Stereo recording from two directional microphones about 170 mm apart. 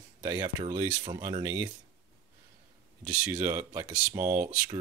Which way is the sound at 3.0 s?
5° right (ahead or behind).